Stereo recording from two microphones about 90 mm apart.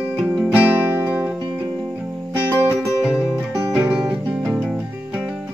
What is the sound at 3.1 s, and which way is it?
Music, centre (ahead or behind).